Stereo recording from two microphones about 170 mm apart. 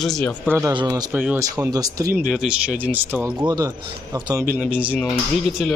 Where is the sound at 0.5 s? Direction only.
15° right (ahead or behind).